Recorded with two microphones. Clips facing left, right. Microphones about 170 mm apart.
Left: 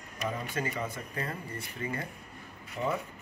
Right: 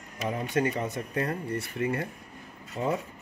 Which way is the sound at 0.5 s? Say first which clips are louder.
Right 10 dB; 55° right (ahead or behind).